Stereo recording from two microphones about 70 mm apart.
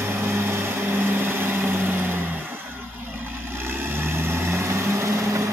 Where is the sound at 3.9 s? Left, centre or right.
Right.